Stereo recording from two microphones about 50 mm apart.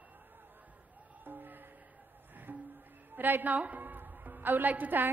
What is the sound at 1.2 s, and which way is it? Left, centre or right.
Music, right.